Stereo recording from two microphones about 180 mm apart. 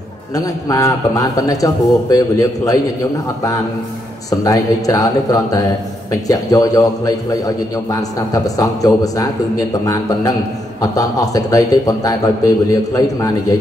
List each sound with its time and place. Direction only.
0.3 s a man's voice: 20° left (ahead or behind)
4.3 s a man's voice: 20° left (ahead or behind)